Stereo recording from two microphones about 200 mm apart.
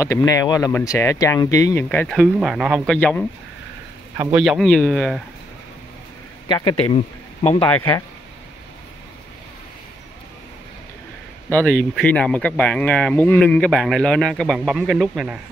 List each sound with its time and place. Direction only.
0.0 s speech: 15° left (ahead or behind)
4.3 s speech: centre (ahead or behind)
6.5 s speech: 20° left (ahead or behind)
11.4 s speech: 5° left (ahead or behind)